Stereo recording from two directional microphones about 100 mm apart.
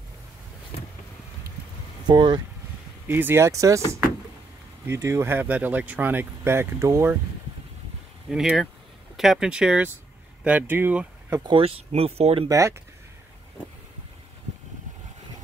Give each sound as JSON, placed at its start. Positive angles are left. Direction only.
{"t": 0.7, "sound": "vehicle", "side_deg": 90}
{"t": 2.0, "sound": "speech", "side_deg": -50}
{"t": 3.1, "sound": "speech", "side_deg": -20}
{"t": 4.8, "sound": "speech", "side_deg": -25}
{"t": 8.3, "sound": "speech", "side_deg": -5}
{"t": 11.4, "sound": "speech", "side_deg": -65}
{"t": 12.4, "sound": "speech", "side_deg": -30}